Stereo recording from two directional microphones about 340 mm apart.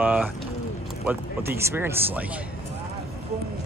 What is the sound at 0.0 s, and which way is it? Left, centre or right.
Bird, centre.